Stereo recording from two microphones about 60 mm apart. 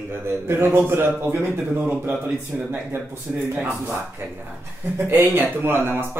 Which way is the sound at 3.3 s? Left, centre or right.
Centre.